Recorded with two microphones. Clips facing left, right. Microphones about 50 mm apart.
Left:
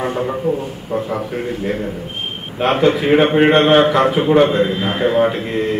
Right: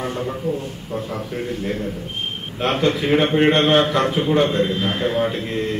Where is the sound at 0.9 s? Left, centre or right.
Centre.